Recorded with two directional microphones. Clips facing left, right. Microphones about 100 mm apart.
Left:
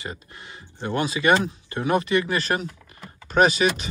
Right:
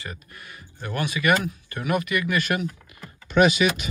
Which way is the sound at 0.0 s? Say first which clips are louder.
Left 3 dB; 25° left (ahead or behind).